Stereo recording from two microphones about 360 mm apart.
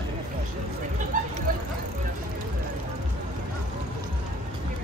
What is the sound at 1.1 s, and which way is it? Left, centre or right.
Vehicle, right.